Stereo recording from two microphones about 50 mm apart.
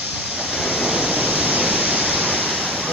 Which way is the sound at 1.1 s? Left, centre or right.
Right.